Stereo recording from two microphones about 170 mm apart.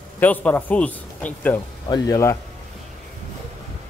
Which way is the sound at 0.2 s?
10° left (ahead or behind).